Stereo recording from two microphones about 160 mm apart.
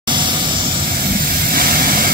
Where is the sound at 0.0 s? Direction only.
30° right (ahead or behind).